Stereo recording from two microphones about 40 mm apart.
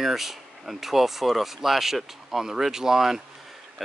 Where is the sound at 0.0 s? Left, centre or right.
Centre.